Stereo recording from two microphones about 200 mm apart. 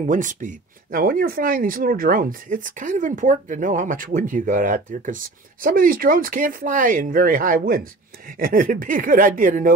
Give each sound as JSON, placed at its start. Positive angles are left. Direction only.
{"t": 0.0, "sound": "speech", "side_deg": -40}